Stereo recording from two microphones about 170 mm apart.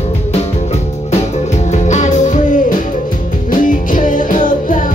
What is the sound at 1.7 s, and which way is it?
Music, 45° left (ahead or behind).